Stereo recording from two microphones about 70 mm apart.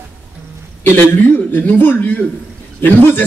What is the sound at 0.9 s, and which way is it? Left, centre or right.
Speech, left.